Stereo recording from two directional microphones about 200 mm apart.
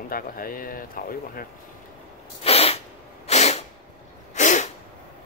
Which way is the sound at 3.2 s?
35° left (ahead or behind).